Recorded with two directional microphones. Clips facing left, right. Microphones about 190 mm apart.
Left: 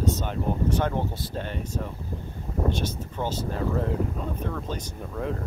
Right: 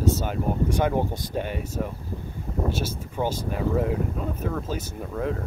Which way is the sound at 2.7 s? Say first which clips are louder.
Even; 10° right (ahead or behind).